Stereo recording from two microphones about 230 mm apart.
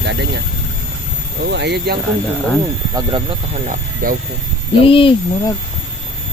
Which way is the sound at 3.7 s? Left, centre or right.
Right.